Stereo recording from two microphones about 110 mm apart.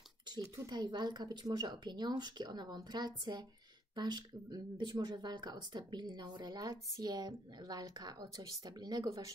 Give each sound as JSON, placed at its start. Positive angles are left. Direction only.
{"t": 0.7, "sound": "speech", "side_deg": -40}